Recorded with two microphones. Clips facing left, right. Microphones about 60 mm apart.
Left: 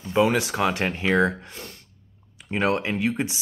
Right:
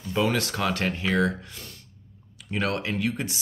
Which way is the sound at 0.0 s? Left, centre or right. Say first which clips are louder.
Left 4 dB; left.